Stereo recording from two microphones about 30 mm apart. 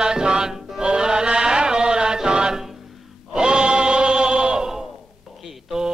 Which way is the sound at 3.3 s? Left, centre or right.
Right.